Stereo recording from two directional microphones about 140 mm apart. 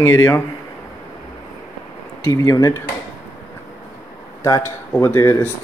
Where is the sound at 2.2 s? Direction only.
25° left (ahead or behind).